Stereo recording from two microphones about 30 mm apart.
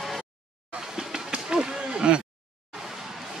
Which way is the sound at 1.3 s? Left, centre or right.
Right.